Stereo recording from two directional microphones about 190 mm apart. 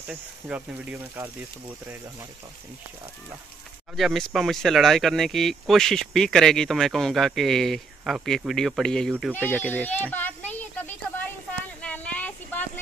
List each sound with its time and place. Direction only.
0.1 s speech: 5° right (ahead or behind)
3.9 s a child's voice: centre (ahead or behind)
11.8 s a sound: 5° left (ahead or behind)